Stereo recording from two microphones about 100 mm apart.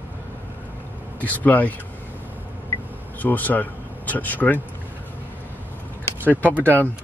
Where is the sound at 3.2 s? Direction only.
15° left (ahead or behind).